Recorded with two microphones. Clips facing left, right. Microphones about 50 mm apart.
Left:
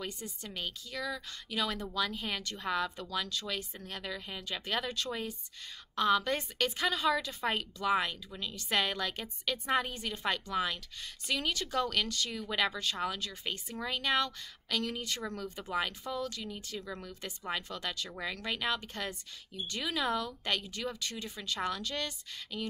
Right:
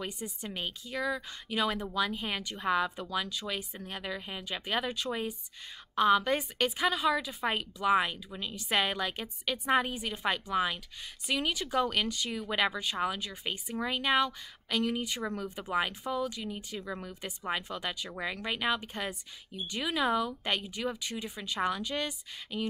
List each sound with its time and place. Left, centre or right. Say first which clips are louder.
0.0 s speech: right 3 dB; centre